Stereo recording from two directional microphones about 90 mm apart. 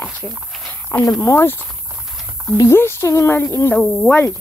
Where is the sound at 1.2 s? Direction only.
30° left (ahead or behind).